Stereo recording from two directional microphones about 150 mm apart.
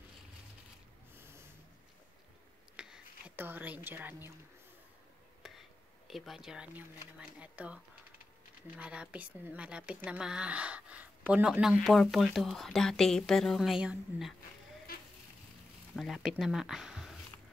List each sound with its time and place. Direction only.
1.1 s snort: 15° right (ahead or behind)
2.7 s whispering: 5° right (ahead or behind)
5.4 s a sound: centre (ahead or behind)
6.0 s a woman's voice: centre (ahead or behind)
16.0 s speech: 5° right (ahead or behind)